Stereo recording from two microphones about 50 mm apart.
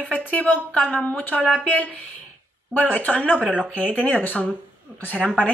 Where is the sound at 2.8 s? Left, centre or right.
Left.